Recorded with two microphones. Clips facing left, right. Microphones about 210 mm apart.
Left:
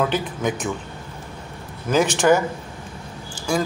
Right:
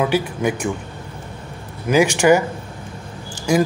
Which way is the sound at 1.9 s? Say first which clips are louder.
Right 3 dB; 10° right (ahead or behind).